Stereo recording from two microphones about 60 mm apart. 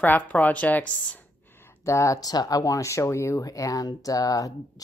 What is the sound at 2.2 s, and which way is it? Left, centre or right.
Speech, left.